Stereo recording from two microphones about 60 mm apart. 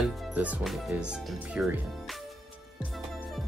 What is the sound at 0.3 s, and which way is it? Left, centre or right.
Speech, right.